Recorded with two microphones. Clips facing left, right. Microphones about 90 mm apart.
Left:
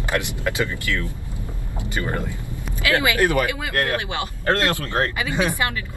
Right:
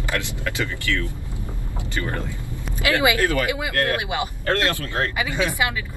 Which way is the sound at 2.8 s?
20° right (ahead or behind).